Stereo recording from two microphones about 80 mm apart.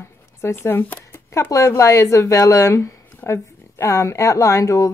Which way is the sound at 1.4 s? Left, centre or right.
Left.